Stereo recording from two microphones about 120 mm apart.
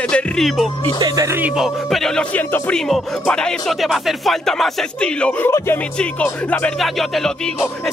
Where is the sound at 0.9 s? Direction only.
35° right (ahead or behind).